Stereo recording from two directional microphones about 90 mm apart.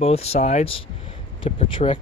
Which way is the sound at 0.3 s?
90° left.